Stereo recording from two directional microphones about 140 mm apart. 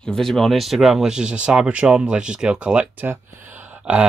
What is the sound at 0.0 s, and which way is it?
Speech, 5° left (ahead or behind).